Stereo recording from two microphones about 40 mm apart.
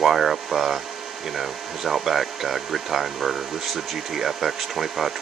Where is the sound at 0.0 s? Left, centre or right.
Centre.